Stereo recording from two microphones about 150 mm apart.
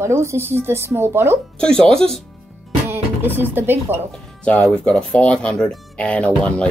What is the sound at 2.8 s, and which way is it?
Speech, 15° right (ahead or behind).